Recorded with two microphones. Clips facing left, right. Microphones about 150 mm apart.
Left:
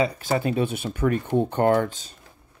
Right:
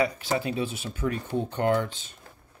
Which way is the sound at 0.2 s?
50° left (ahead or behind).